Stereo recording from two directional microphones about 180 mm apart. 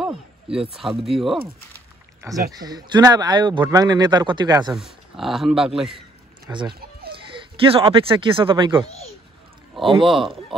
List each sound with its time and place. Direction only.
0.0 s speech: 5° right (ahead or behind)
2.3 s a man's voice: 15° right (ahead or behind)
4.7 s a man's voice: centre (ahead or behind)
6.4 s speech: 25° right (ahead or behind)
6.7 s chicken: 60° right (ahead or behind)
7.2 s speech: 30° right (ahead or behind)
10.0 s a man's voice: centre (ahead or behind)